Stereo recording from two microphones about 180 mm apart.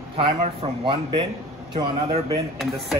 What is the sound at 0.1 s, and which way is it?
A man's voice, 35° right (ahead or behind).